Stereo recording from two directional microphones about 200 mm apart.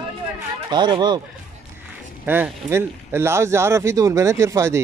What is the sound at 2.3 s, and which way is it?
A man's voice, 10° right (ahead or behind).